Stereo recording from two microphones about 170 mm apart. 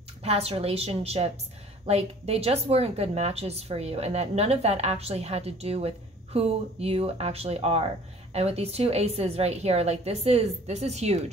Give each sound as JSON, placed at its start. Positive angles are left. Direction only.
{"t": 0.2, "sound": "a woman's voice", "side_deg": -35}